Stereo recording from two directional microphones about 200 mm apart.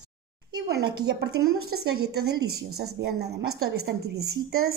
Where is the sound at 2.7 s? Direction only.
55° right (ahead or behind).